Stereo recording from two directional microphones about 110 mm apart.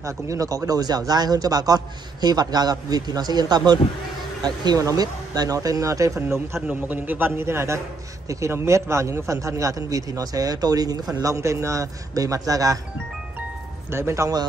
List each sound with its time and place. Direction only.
0.0 s a man's voice: 30° right (ahead or behind)
13.8 s a man's voice: 25° right (ahead or behind)